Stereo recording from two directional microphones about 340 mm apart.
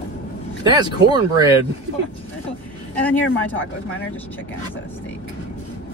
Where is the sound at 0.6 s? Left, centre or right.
Centre.